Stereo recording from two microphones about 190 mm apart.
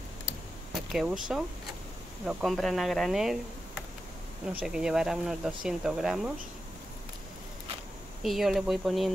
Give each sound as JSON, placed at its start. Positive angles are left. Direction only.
{"t": 0.9, "sound": "speech", "side_deg": -5}
{"t": 4.5, "sound": "speech", "side_deg": -5}
{"t": 8.2, "sound": "speech", "side_deg": 0}